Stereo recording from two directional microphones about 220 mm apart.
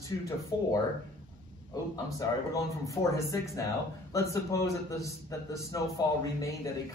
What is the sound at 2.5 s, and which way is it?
Speech, 15° left (ahead or behind).